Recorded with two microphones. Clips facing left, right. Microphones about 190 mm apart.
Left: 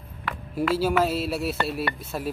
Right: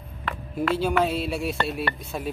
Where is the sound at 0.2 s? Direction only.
5° left (ahead or behind).